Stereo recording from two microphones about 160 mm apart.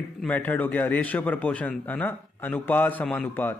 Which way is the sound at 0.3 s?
10° left (ahead or behind).